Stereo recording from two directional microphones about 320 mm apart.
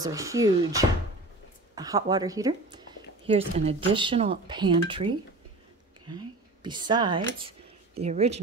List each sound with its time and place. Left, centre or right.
0.0 s speech: centre